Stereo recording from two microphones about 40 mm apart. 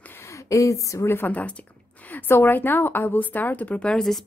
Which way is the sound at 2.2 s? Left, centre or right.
Left.